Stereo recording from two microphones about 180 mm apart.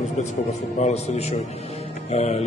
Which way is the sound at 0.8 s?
40° left (ahead or behind).